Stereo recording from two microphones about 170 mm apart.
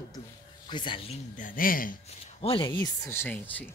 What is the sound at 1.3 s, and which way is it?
Speech, 55° left (ahead or behind).